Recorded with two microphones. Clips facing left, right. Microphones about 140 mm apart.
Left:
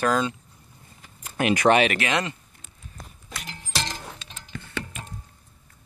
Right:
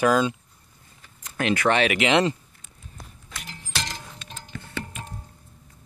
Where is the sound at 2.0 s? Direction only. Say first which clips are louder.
Right 6 dB; 20° right (ahead or behind).